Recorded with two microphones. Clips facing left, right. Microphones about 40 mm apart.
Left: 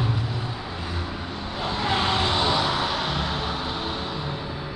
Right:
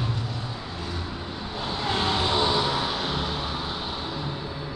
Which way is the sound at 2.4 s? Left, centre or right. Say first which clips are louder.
Left 1 dB; centre.